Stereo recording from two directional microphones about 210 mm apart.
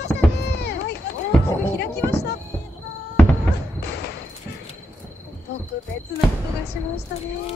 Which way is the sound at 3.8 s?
50° left (ahead or behind).